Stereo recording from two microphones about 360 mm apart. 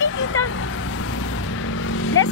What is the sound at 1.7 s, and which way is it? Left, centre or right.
Vehicle, left.